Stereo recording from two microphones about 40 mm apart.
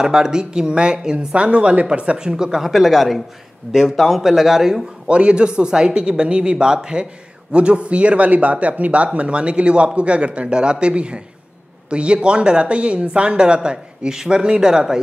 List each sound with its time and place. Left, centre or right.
0.0 s speech: centre
2.1 s a man's voice: centre
4.2 s speech: centre
5.0 s speech: right